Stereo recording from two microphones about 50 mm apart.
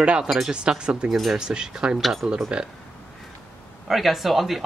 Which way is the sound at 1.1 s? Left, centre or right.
Centre.